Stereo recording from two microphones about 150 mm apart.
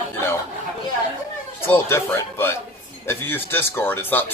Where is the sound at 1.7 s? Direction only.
15° left (ahead or behind).